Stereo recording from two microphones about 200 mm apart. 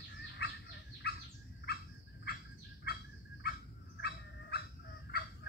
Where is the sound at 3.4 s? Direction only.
55° left (ahead or behind).